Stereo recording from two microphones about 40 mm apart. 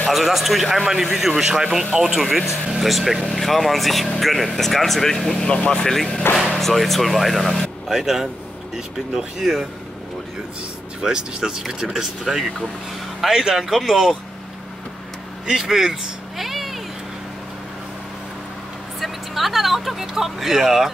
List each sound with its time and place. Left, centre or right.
0.1 s a man's voice: centre
5.5 s speech: left
5.9 s speech: centre
7.9 s a man's voice: centre
11.0 s a man's voice: centre
15.4 s speech: centre
18.9 s speech: centre